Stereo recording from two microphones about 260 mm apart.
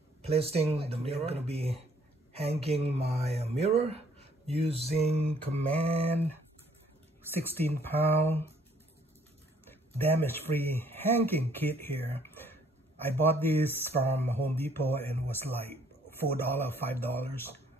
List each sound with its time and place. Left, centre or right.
0.2 s mantra: right
7.2 s speech: centre
9.7 s speech: centre
12.2 s a sound: centre
13.2 s speech: centre